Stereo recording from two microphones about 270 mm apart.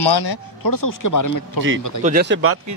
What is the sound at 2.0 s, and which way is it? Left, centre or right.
Speech, right.